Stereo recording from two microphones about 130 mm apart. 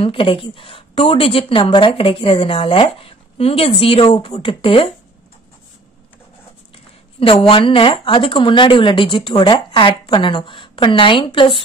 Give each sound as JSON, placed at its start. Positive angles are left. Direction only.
{"t": 0.0, "sound": "a woman's voice", "side_deg": 45}
{"t": 6.7, "sound": "speech", "side_deg": 45}